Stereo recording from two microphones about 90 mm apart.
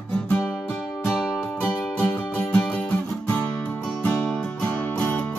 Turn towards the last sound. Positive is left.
turn(degrees=20)  # may be behind; listen again after turning